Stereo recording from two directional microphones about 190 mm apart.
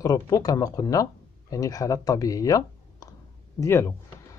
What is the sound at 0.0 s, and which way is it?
Speech, 20° left (ahead or behind).